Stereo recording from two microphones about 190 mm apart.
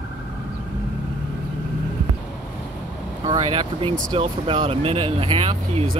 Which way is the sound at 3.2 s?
20° right (ahead or behind).